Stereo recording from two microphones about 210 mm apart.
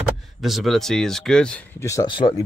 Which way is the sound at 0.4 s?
Centre (ahead or behind).